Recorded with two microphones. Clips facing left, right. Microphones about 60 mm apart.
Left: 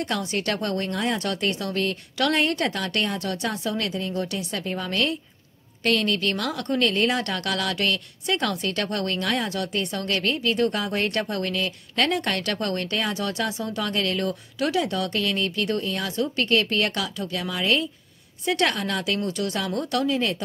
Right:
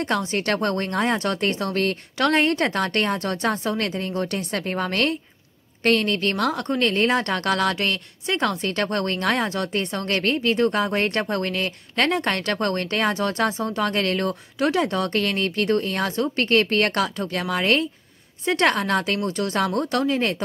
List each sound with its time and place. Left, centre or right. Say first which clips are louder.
0.0 s speech: right 3 dB; right
5.9 s speech: right 2 dB; right